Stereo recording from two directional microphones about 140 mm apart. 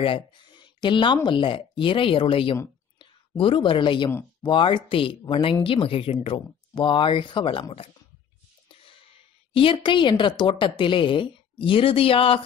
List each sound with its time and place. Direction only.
0.0 s a woman's voice: 35° left (ahead or behind)
9.5 s a woman's voice: 40° left (ahead or behind)